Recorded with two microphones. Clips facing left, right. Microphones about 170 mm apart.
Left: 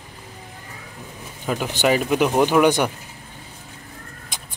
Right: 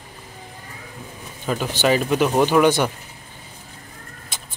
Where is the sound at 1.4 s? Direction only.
10° left (ahead or behind).